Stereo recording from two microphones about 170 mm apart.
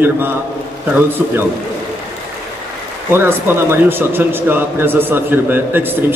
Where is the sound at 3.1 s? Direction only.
15° right (ahead or behind).